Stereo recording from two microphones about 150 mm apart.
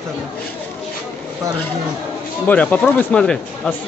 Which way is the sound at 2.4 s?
10° left (ahead or behind).